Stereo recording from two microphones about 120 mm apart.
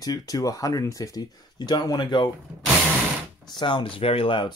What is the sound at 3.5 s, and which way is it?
Speech, 40° left (ahead or behind).